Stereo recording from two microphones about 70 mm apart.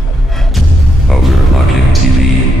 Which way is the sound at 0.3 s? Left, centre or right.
Centre.